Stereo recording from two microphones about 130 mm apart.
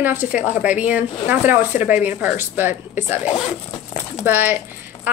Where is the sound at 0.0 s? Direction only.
15° right (ahead or behind).